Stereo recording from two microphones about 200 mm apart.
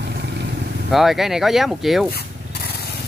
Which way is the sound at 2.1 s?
50° left (ahead or behind).